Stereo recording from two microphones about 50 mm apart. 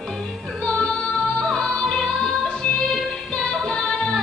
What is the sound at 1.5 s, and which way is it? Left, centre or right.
Music, centre.